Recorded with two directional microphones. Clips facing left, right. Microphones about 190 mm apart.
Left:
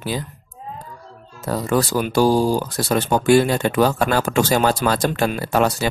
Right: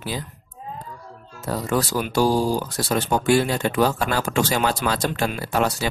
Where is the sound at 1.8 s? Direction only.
55° left (ahead or behind).